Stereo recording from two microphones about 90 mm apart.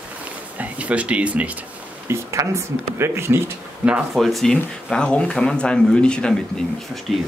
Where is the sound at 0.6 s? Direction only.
15° right (ahead or behind).